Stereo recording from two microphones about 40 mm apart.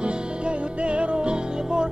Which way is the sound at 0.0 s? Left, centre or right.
Right.